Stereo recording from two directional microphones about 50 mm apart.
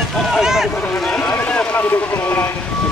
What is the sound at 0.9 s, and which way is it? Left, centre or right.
Run, centre.